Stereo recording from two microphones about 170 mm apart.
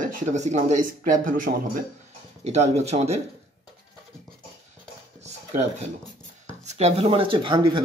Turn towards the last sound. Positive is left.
turn(degrees=-25)  # may be behind; listen again after turning